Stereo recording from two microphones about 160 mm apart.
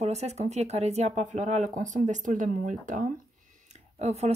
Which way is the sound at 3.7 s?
45° right (ahead or behind).